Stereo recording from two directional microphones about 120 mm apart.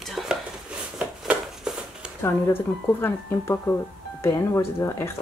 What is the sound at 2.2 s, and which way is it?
Speech, 20° left (ahead or behind).